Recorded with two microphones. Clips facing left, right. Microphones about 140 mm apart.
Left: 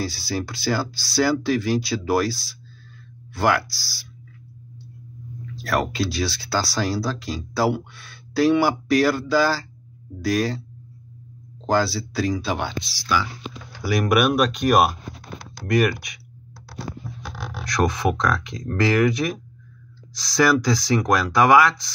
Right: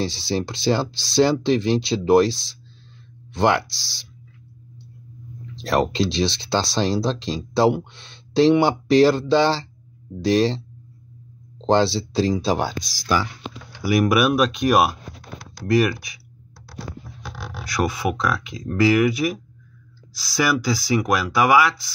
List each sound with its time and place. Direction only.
0.0 s speech: 25° right (ahead or behind)
5.6 s speech: 25° right (ahead or behind)
11.6 s speech: 25° right (ahead or behind); by 13.3 s 45° right (ahead or behind)
14.2 s speech: centre (ahead or behind)
17.6 s speech: 10° right (ahead or behind)